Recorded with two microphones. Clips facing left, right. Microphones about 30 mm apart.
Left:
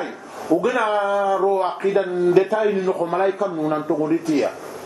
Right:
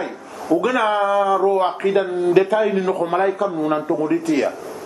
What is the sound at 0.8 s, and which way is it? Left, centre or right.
Speech, right.